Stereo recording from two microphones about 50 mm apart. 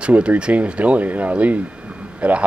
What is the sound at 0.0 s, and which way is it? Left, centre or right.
Speech, right.